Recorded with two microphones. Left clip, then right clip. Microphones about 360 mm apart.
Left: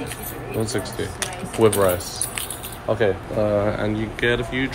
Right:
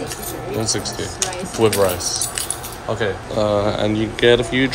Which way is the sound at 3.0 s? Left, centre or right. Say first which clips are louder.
Right 2 dB; centre.